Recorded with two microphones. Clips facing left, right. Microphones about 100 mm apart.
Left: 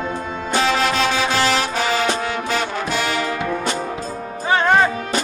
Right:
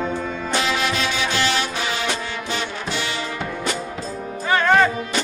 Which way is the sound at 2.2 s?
50° left (ahead or behind).